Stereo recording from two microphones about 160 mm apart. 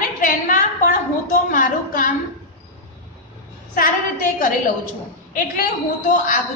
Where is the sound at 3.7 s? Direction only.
55° left (ahead or behind).